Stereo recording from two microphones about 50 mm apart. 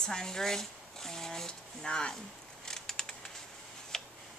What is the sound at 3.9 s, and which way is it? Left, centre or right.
Tick, centre.